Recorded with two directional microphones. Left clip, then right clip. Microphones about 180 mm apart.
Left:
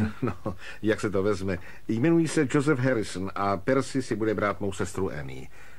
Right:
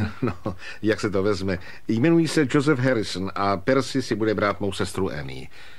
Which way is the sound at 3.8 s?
50° right (ahead or behind).